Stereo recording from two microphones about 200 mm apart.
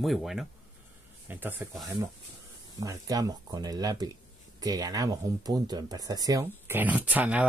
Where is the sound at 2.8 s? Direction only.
20° right (ahead or behind).